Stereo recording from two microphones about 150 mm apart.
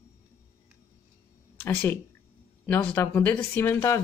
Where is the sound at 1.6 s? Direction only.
10° left (ahead or behind).